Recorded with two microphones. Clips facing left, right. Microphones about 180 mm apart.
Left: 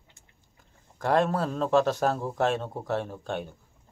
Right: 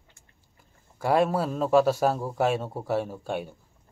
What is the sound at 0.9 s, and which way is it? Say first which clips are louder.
Speech: right 1 dB; 10° right (ahead or behind).